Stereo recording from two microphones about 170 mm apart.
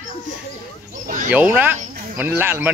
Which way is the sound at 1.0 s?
50° right (ahead or behind).